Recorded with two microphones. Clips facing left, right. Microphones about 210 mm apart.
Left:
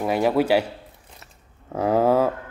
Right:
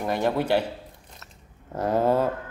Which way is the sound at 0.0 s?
10° left (ahead or behind).